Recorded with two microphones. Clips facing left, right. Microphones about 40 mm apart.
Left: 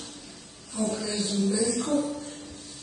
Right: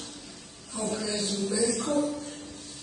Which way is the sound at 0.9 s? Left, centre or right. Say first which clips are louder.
Right 3 dB; centre.